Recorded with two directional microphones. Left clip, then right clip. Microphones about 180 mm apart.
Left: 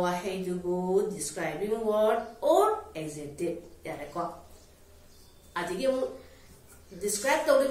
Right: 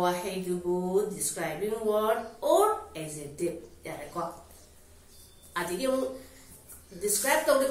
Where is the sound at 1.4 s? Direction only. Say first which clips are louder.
Left 1 dB; 10° left (ahead or behind).